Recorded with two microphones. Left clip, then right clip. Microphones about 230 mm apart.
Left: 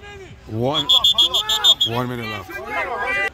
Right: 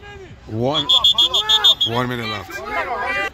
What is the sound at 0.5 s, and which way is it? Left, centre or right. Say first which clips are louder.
Speech: right 1 dB; centre.